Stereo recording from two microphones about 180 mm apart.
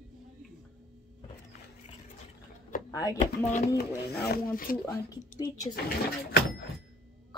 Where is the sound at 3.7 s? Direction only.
60° left (ahead or behind).